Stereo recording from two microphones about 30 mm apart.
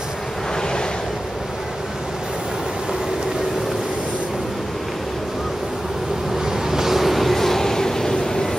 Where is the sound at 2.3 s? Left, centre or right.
Centre.